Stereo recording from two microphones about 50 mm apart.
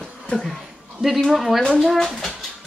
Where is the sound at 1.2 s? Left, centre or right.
Centre.